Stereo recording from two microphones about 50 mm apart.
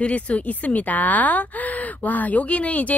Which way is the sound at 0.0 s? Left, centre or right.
Left.